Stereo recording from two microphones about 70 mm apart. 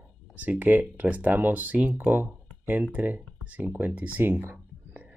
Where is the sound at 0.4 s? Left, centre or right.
Right.